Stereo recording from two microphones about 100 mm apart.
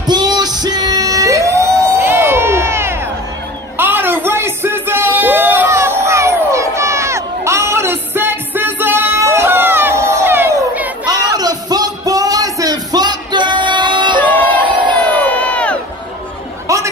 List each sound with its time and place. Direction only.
0.0 s music: 45° right (ahead or behind); by 3.0 s 25° right (ahead or behind)
3.7 s a sound: 20° right (ahead or behind)
11.3 s music: 40° right (ahead or behind)
14.2 s music: 15° left (ahead or behind)
15.0 s crowd: 15° left (ahead or behind)